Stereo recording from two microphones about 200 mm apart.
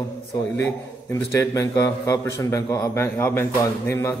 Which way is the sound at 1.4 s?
15° left (ahead or behind).